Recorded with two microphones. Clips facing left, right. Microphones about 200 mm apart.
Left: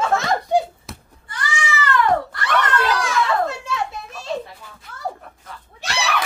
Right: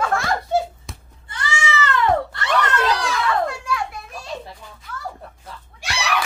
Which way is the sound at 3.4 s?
25° left (ahead or behind).